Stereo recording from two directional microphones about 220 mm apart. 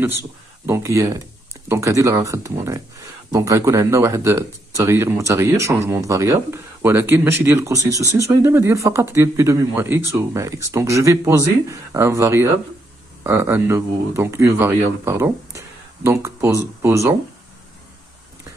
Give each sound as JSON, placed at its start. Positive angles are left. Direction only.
{"t": 0.7, "sound": "speech", "side_deg": -15}